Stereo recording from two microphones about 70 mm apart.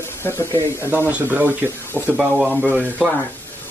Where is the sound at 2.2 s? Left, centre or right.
Centre.